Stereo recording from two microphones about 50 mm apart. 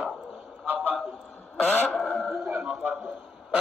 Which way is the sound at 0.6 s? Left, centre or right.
Right.